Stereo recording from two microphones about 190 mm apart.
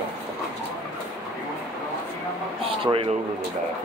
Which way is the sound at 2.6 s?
30° right (ahead or behind).